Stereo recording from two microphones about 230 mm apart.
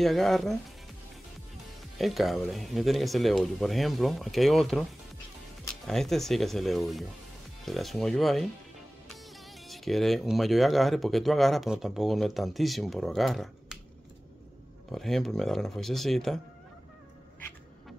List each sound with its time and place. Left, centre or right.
0.0 s speech: centre
2.0 s speech: centre
5.9 s speech: centre
14.9 s speech: centre